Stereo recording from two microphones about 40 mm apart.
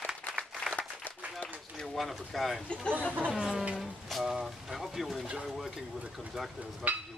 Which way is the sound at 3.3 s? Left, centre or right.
Right.